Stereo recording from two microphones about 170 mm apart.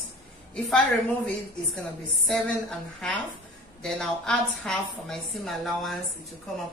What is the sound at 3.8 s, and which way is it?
A woman's voice, 5° left (ahead or behind).